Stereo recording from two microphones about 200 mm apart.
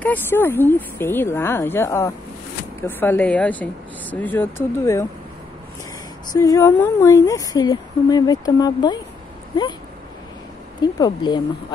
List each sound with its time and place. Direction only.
0.0 s speech: 10° left (ahead or behind)
6.3 s speech: 15° left (ahead or behind)
10.8 s speech: 20° left (ahead or behind)